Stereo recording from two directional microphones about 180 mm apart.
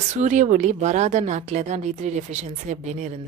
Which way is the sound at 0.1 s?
40° right (ahead or behind).